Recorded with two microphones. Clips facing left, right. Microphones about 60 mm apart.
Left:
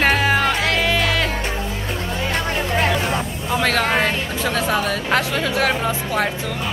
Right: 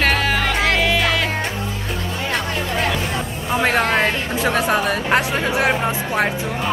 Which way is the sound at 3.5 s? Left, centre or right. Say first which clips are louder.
Right 1 dB; right.